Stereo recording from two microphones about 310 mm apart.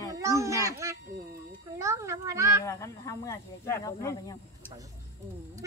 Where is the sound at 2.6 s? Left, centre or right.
Centre.